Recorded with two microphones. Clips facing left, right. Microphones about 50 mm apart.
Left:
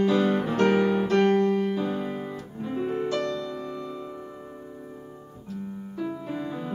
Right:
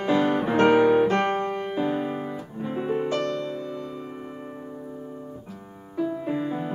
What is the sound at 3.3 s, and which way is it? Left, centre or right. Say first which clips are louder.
Music: right 2 dB; right.